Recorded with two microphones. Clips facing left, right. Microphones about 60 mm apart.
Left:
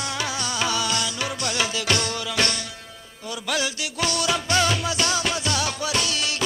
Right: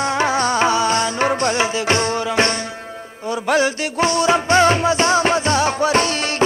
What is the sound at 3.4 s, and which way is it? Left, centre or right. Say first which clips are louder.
Music: right 9 dB; right.